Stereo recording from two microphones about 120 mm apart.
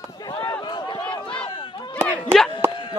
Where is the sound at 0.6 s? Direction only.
40° left (ahead or behind).